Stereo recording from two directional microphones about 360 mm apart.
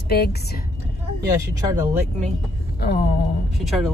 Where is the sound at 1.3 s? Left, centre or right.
Centre.